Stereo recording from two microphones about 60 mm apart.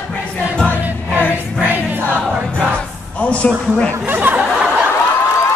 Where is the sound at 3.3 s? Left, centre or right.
Centre.